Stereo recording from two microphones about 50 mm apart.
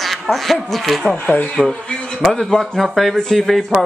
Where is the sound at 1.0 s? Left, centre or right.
Left.